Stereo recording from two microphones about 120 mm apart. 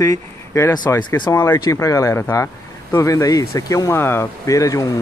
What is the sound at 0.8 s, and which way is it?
Speech, 35° left (ahead or behind).